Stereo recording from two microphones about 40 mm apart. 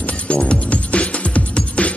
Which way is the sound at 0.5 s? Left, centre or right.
Left.